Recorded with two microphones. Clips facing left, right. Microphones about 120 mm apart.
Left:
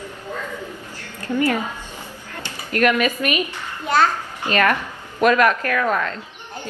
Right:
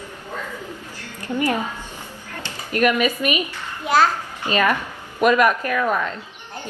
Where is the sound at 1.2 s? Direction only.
15° right (ahead or behind).